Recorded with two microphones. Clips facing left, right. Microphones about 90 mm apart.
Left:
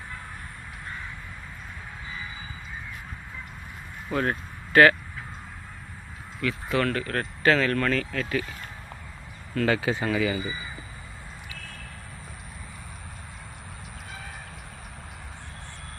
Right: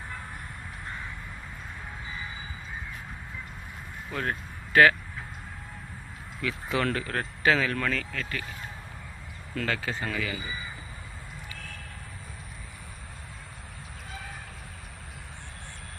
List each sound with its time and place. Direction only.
4.1 s speech: 5° left (ahead or behind)
6.4 s speech: 20° right (ahead or behind); by 8.5 s 10° left (ahead or behind)
9.7 s speech: 15° left (ahead or behind)